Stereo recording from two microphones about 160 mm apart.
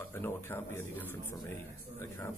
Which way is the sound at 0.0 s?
15° left (ahead or behind).